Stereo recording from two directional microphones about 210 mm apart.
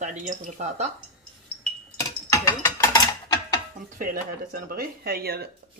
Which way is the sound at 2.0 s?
15° left (ahead or behind).